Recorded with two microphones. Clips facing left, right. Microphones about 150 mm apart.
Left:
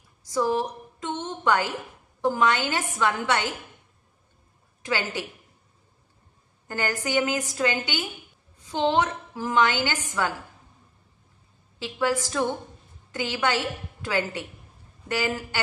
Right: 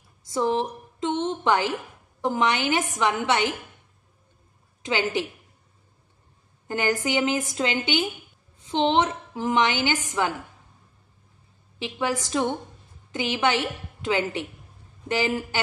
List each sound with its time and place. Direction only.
0.3 s a woman's voice: 25° right (ahead or behind)
4.8 s a woman's voice: 20° right (ahead or behind)
6.7 s a woman's voice: 20° right (ahead or behind)
11.8 s a woman's voice: 20° right (ahead or behind)